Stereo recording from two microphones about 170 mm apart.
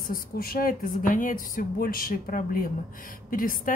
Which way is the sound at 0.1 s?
60° left (ahead or behind).